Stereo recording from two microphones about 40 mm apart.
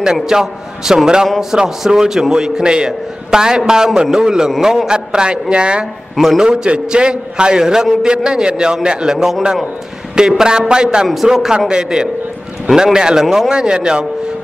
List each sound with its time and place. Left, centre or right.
0.0 s a man's voice: centre